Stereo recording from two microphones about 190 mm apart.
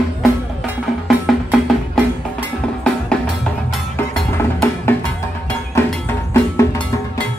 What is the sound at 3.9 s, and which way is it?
Music, 10° left (ahead or behind).